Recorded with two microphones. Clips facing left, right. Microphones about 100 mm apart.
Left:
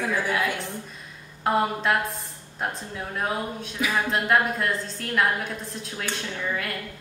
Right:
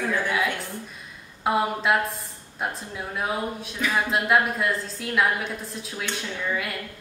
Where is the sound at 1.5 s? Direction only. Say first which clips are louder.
Even; centre (ahead or behind).